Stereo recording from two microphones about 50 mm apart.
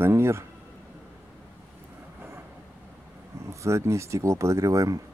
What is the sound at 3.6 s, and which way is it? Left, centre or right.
Speech, right.